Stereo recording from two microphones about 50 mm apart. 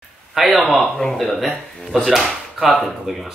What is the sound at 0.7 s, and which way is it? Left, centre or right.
Speech, centre.